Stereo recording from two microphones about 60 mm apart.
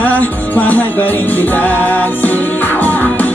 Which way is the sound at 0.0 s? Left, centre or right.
Left.